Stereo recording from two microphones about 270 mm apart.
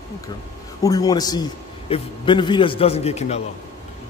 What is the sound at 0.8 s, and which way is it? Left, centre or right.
A man's voice, centre.